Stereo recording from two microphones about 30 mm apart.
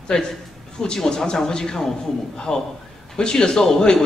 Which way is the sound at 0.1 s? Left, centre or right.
Left.